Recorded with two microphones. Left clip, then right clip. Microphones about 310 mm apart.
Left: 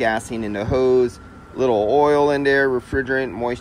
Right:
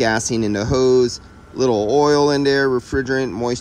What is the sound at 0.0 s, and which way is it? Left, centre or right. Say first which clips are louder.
Speech: right 3 dB; centre.